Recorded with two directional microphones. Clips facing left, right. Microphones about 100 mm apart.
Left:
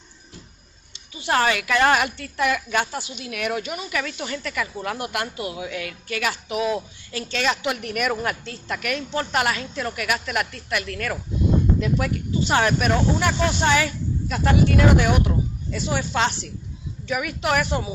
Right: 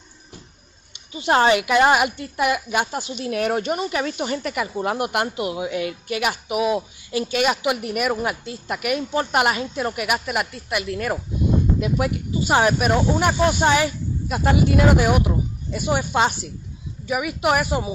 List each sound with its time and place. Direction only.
1.1 s speech: 25° right (ahead or behind)
3.1 s speech: 30° right (ahead or behind)
3.9 s speech: 25° right (ahead or behind); by 17.8 s 10° right (ahead or behind)